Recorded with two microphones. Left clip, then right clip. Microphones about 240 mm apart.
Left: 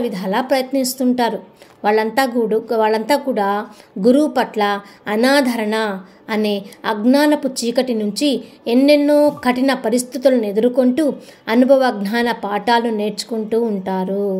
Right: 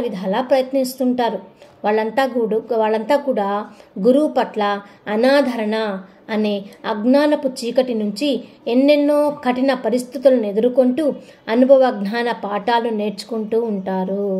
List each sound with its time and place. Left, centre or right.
0.0 s a woman's voice: left